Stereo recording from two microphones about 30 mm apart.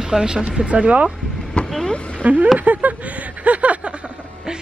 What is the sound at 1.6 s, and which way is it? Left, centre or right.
Vehicle, centre.